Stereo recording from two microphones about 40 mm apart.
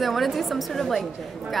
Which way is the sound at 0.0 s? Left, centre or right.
Centre.